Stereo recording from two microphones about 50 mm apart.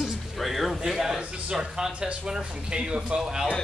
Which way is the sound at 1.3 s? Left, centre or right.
Centre.